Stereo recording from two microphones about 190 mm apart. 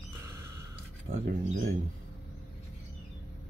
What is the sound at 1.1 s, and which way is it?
Speech, 55° right (ahead or behind).